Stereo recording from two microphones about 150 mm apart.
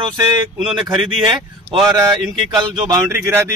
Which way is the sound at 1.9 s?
25° right (ahead or behind).